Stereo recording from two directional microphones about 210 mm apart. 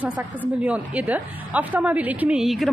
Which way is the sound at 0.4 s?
5° right (ahead or behind).